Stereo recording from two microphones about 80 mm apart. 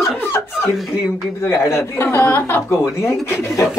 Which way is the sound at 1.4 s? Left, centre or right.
Left.